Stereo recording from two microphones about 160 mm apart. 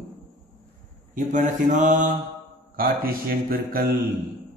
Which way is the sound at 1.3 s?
50° right (ahead or behind).